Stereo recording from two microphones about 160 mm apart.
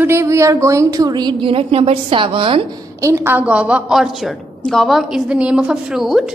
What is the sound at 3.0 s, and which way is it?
A woman's voice, 20° right (ahead or behind).